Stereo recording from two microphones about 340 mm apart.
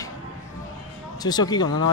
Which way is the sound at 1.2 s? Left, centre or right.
Centre.